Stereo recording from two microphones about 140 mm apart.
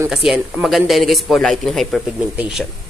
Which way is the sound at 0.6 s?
Centre (ahead or behind).